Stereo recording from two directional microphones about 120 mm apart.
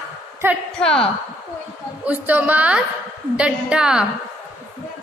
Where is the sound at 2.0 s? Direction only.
15° right (ahead or behind).